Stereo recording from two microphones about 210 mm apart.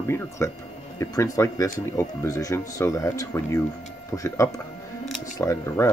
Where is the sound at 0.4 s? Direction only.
15° left (ahead or behind).